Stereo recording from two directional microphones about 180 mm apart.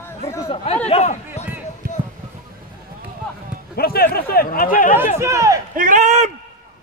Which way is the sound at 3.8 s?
55° left (ahead or behind).